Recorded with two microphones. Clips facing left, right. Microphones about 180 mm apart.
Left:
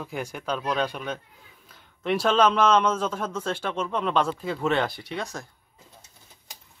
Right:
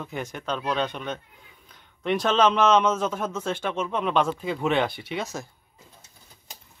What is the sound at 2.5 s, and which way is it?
A man's voice, 5° right (ahead or behind).